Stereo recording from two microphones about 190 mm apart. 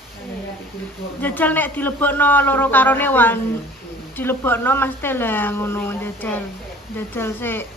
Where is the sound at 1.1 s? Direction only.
10° left (ahead or behind).